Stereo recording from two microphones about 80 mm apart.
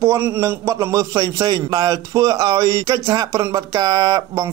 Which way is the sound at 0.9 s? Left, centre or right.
Right.